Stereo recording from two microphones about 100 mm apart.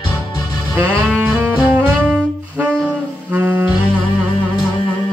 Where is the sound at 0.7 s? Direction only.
20° right (ahead or behind).